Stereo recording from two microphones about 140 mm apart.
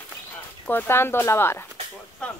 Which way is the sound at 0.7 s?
15° left (ahead or behind).